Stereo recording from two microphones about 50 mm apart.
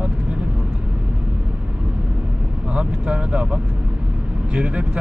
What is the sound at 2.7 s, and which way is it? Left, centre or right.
Speech, centre.